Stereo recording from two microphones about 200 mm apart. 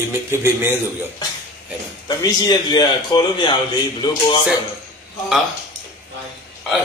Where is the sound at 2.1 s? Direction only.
20° left (ahead or behind).